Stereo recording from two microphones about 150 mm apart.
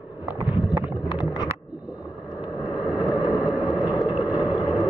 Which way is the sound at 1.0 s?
30° left (ahead or behind).